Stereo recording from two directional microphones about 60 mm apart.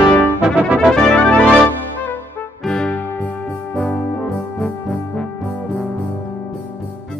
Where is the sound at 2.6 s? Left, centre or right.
Centre.